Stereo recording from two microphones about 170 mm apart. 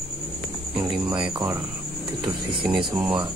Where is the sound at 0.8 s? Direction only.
25° right (ahead or behind).